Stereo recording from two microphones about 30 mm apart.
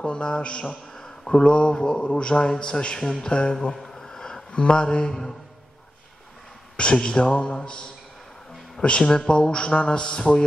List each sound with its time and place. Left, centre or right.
0.0 s a man's voice: left
0.9 s a sound: centre
1.3 s a man's voice: left
3.9 s a sound: centre
4.5 s a man's voice: left
7.0 s a man's voice: left
8.8 s a man's voice: left